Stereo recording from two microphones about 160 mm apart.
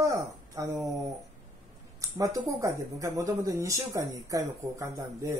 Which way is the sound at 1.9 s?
20° right (ahead or behind).